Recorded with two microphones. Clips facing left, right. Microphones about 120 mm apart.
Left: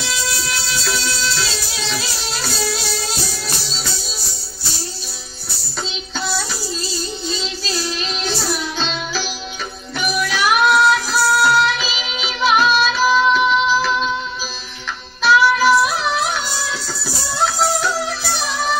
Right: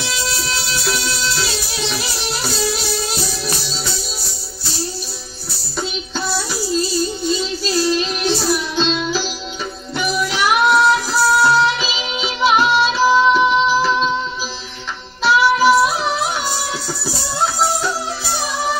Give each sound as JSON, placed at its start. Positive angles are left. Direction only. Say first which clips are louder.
{"t": 1.4, "sound": "music", "louder": "right 2 dB", "side_deg": -20}
{"t": 8.7, "sound": "music", "louder": "right 5 dB", "side_deg": -15}
{"t": 15.2, "sound": "music", "louder": "right 1 dB", "side_deg": -20}